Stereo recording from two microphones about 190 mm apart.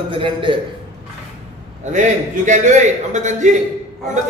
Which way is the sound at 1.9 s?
40° right (ahead or behind).